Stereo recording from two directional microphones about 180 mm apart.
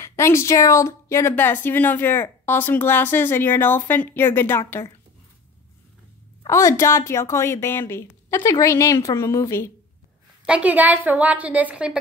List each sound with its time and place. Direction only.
0.0 s a woman's voice: 15° left (ahead or behind)
6.4 s a woman's voice: 15° left (ahead or behind)
10.4 s a woman's voice: 5° right (ahead or behind)